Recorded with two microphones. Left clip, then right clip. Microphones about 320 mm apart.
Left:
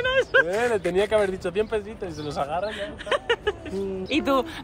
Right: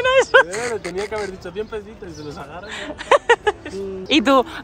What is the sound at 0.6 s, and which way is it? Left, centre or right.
Speech, left.